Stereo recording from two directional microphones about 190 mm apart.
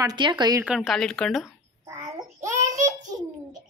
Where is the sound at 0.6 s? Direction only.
Centre (ahead or behind).